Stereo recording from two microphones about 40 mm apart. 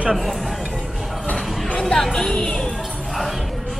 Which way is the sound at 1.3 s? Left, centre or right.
Left.